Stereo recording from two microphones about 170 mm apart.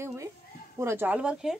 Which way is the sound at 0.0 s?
15° right (ahead or behind).